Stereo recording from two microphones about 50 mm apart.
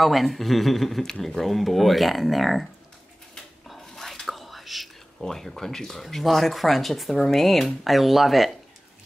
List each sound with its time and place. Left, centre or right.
0.0 s speech: centre
3.6 s whispering: centre
5.2 s speech: centre